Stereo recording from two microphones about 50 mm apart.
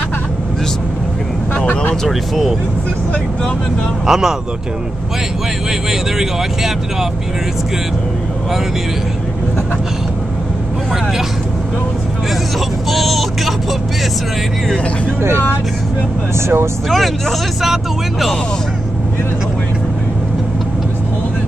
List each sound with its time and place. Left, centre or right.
2.0 s speech: centre
4.0 s speech: centre
5.9 s speech: centre
12.9 s vehicle: centre
16.3 s speech: right